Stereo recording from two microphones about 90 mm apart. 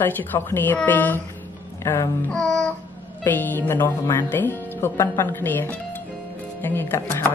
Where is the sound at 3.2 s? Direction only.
20° left (ahead or behind).